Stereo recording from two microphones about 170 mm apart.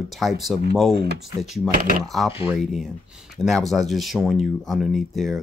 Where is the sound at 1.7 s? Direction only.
60° right (ahead or behind).